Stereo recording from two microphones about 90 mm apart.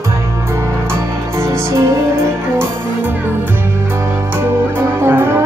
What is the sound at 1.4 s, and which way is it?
Music, 30° right (ahead or behind).